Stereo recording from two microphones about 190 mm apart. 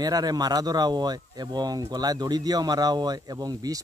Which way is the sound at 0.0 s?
20° right (ahead or behind).